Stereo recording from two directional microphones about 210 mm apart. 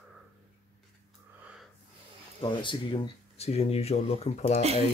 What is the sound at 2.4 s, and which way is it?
Speech, 25° left (ahead or behind).